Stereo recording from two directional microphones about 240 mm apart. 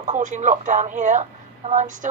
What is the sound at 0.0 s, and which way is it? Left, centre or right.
Speech, right.